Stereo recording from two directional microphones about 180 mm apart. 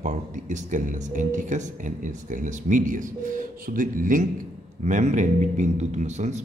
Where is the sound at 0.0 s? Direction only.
45° right (ahead or behind).